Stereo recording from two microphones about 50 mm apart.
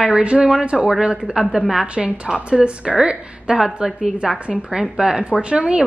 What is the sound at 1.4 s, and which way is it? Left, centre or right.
Speech, centre.